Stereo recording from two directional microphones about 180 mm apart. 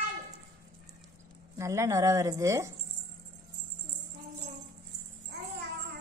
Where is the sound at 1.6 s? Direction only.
15° right (ahead or behind).